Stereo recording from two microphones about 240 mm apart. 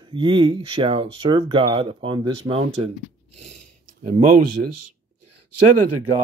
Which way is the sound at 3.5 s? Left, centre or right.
Right.